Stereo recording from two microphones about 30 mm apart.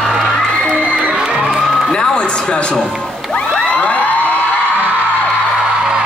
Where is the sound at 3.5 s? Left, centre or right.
Left.